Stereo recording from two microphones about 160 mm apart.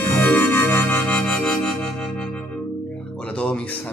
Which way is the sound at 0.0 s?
10° left (ahead or behind).